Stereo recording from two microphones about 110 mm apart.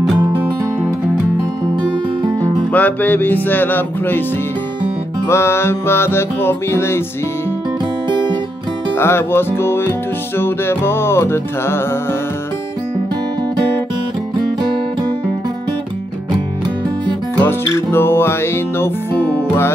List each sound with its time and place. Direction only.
2.7 s music: 15° left (ahead or behind)
5.3 s music: 25° left (ahead or behind)
8.9 s music: 20° left (ahead or behind)
17.4 s music: 20° left (ahead or behind)